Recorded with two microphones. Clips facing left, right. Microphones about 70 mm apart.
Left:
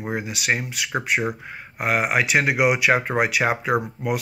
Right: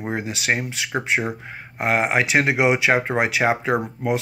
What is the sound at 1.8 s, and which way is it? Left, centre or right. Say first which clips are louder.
Speech: right 1 dB; right.